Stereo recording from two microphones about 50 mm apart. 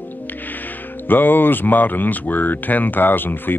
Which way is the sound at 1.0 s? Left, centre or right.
Left.